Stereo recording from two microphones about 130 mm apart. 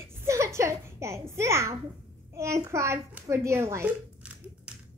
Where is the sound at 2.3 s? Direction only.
25° right (ahead or behind).